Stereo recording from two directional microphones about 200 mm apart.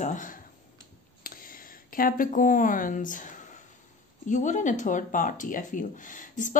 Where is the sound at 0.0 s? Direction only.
40° left (ahead or behind).